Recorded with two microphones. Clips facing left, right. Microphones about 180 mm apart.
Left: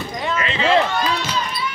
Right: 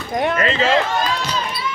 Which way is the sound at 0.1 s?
55° right (ahead or behind).